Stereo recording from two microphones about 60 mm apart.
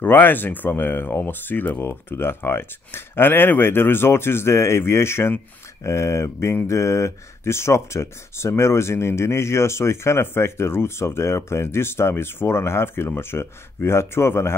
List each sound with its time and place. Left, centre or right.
0.0 s speech: left
5.9 s speech: left
6.7 s speech: left